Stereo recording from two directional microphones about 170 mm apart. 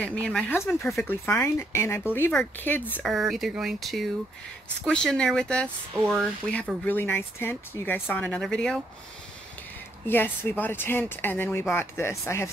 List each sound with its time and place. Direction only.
0.0 s speech: 5° left (ahead or behind)
2.9 s speech: centre (ahead or behind)
10.0 s speech: 10° left (ahead or behind)